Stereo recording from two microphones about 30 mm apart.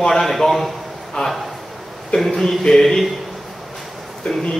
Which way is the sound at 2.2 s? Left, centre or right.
Centre.